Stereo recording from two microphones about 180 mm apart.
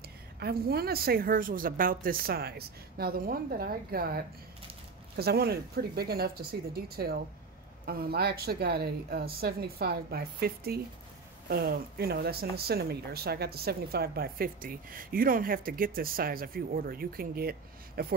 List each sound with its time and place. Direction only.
0.4 s speech: 60° right (ahead or behind)